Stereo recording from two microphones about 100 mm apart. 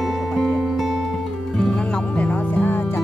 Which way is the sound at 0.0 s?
Centre (ahead or behind).